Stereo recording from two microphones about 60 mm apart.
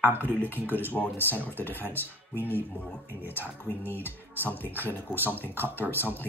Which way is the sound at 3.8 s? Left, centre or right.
Left.